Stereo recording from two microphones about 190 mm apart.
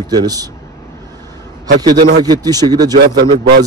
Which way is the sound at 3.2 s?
55° right (ahead or behind).